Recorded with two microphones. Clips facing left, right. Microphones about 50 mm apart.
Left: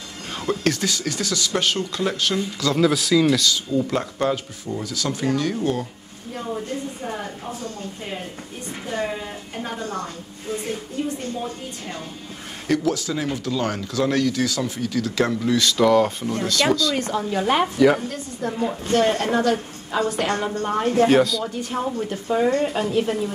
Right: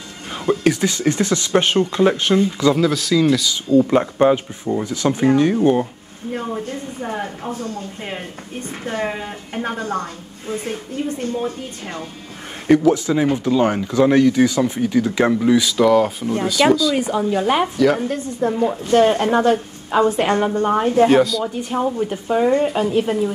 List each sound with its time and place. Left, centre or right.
0.5 s speech: centre
0.8 s speech: right
2.7 s speech: centre
3.4 s speech: centre
8.8 s speech: right
12.6 s speech: right; by 17.6 s centre
18.0 s speech: right
18.5 s speech: centre
19.0 s speech: centre
21.1 s speech: centre